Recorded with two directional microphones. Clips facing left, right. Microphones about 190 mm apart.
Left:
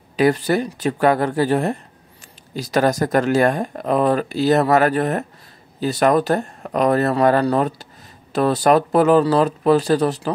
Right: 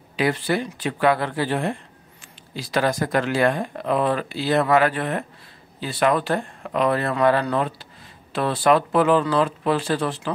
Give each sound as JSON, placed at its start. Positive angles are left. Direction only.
{"t": 0.1, "sound": "speech", "side_deg": 45}